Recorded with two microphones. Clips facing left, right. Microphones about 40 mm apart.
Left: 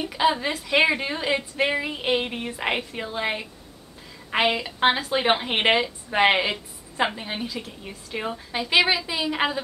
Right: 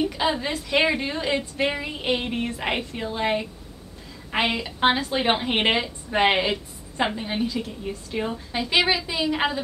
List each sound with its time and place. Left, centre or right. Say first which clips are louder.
0.0 s a woman's voice: left 1 dB; centre